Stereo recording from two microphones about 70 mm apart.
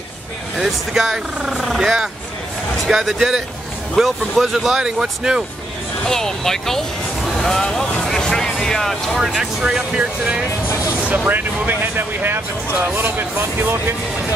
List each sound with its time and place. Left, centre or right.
0.6 s speech: centre
6.0 s speech: centre
8.0 s music: centre
9.6 s speech: centre
11.2 s speech: right